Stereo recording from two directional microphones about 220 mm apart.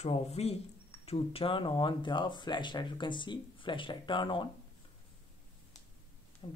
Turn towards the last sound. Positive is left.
turn(degrees=25)  # may be behind; listen again after turning